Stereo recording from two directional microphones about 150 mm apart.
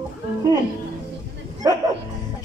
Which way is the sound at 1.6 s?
20° right (ahead or behind).